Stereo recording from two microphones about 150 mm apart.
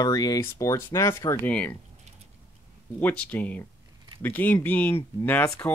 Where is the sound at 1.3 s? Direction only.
10° left (ahead or behind).